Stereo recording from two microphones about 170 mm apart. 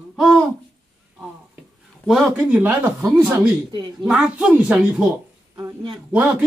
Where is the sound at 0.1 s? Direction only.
Centre (ahead or behind).